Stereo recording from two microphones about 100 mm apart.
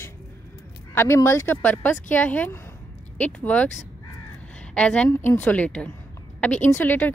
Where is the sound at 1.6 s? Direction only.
15° left (ahead or behind).